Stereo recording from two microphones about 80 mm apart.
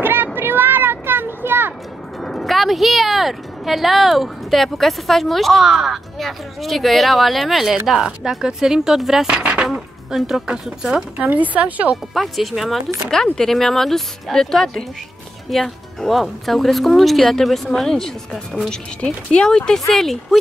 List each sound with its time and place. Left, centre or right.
0.0 s a sound: right
2.2 s a woman's voice: centre
9.4 s a sound: centre
9.7 s speech: centre
11.2 s speech: centre
12.1 s a woman's voice: centre